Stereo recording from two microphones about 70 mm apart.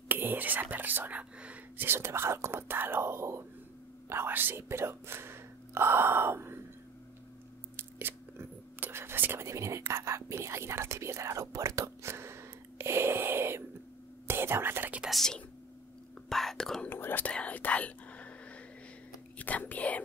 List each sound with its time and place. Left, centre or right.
0.1 s speech: right
1.9 s speech: right
7.7 s speech: right
15.0 s speech: centre
16.8 s speech: left
17.3 s whispering: centre
19.3 s speech: left